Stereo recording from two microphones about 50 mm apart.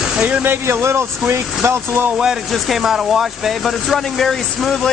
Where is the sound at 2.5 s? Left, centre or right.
Centre.